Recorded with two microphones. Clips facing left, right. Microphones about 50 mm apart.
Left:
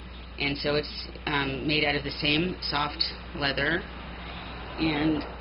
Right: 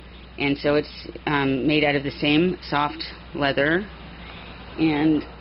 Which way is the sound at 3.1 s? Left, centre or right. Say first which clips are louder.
Right 6 dB; right.